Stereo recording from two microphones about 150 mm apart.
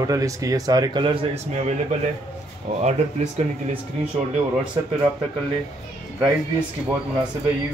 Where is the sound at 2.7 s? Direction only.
55° right (ahead or behind).